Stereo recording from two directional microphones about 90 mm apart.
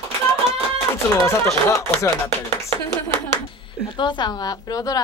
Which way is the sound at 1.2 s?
35° left (ahead or behind).